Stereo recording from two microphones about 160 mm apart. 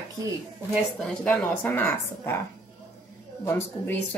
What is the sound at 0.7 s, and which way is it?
Speech, 5° left (ahead or behind).